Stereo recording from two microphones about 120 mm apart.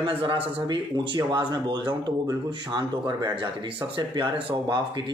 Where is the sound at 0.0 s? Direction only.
45° right (ahead or behind).